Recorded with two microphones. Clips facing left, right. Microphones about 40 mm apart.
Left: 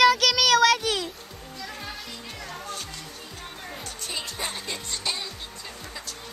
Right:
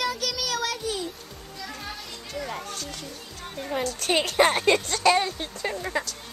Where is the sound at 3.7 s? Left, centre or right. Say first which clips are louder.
Right 12 dB; right.